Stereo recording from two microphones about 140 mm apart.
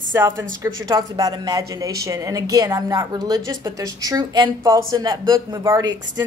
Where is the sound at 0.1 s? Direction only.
15° right (ahead or behind).